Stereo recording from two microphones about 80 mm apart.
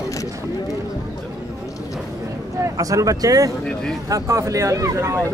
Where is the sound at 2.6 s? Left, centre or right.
Right.